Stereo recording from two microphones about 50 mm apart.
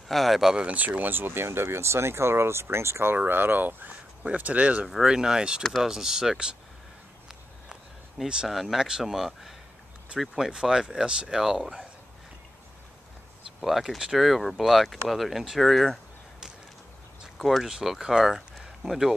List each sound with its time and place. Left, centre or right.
0.1 s speech: centre
0.6 s speech: right
3.2 s speech: right
5.0 s speech: centre
8.5 s speech: centre
13.6 s speech: centre
17.4 s speech: centre
17.6 s speech: centre